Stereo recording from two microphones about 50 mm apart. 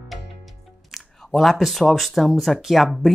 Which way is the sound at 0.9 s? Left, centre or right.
Centre.